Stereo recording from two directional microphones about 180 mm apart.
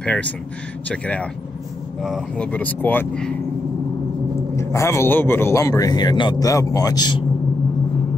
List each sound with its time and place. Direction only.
0.0 s speech: 5° left (ahead or behind)
4.6 s speech: 15° left (ahead or behind)